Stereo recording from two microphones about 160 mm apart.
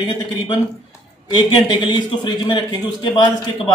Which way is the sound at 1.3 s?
30° left (ahead or behind).